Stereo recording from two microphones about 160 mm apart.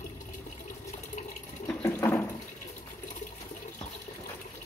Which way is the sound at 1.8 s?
15° left (ahead or behind).